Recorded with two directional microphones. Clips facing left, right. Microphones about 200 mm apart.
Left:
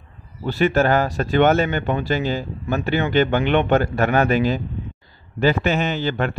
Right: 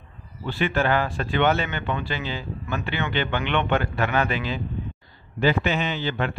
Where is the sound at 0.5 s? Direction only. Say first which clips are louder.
Left 6 dB; 40° left (ahead or behind).